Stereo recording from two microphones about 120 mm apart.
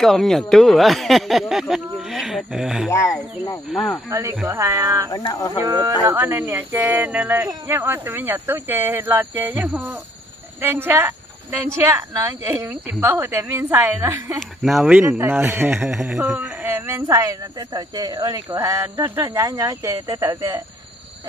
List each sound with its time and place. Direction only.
0.0 s speech: centre (ahead or behind)
2.9 s speech: 25° left (ahead or behind)
4.1 s speech: 25° right (ahead or behind)
5.3 s speech: 30° left (ahead or behind)
5.6 s speech: 25° right (ahead or behind)
14.6 s speech: 5° right (ahead or behind)
15.0 s speech: 20° right (ahead or behind)